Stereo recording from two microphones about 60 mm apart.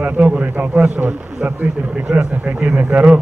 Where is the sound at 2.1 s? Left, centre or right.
Centre.